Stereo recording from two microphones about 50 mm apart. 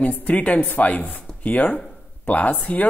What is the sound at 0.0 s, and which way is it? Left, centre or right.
A woman's voice, left.